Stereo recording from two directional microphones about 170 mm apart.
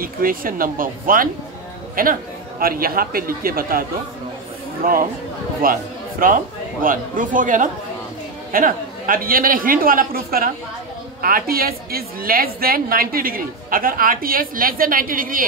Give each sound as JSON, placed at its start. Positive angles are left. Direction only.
{"t": 0.0, "sound": "a woman's voice", "side_deg": -55}
{"t": 4.8, "sound": "a woman's voice", "side_deg": -55}